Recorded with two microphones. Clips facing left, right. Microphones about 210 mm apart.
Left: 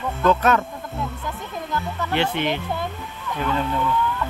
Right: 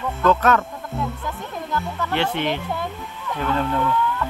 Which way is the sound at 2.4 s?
35° right (ahead or behind).